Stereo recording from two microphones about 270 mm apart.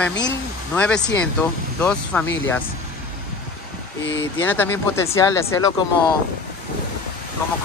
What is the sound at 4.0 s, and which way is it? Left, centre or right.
Speech, left.